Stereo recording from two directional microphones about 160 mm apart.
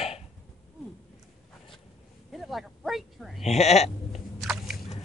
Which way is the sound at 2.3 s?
Centre (ahead or behind).